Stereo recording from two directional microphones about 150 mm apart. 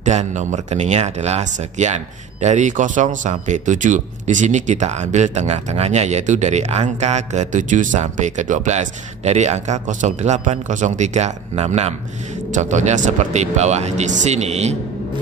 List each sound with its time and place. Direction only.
0.0 s speech: 50° right (ahead or behind)